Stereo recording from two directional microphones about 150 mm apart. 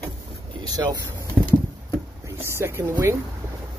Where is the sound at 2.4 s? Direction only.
15° right (ahead or behind).